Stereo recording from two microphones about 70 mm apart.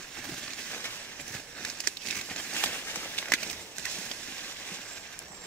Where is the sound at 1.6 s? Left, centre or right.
Centre.